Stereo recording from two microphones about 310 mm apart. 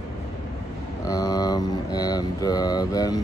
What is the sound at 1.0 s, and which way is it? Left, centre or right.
Speech, centre.